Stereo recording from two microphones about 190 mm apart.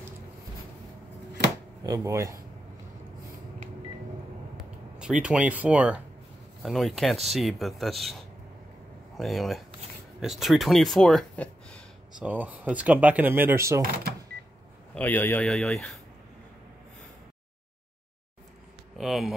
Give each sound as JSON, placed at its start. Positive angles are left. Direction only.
{"t": 1.8, "sound": "speech", "side_deg": -15}
{"t": 4.6, "sound": "speech", "side_deg": -5}
{"t": 12.2, "sound": "speech", "side_deg": -10}
{"t": 15.0, "sound": "speech", "side_deg": 10}
{"t": 18.9, "sound": "speech", "side_deg": 0}